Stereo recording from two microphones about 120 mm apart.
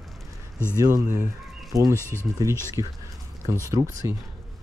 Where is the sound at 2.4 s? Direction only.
30° right (ahead or behind).